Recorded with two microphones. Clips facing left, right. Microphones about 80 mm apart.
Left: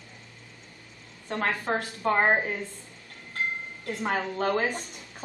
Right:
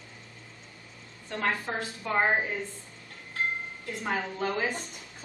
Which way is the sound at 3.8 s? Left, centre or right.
Left.